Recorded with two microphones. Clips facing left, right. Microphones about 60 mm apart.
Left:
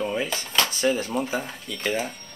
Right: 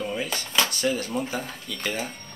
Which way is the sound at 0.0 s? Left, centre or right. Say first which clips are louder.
Left 3 dB; left.